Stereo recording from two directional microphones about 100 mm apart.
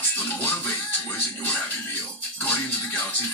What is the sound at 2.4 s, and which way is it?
Speech, 20° left (ahead or behind).